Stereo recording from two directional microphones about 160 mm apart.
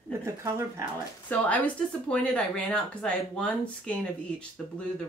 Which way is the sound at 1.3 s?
10° left (ahead or behind).